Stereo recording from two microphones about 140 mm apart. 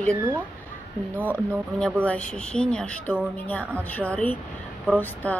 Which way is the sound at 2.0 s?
10° left (ahead or behind).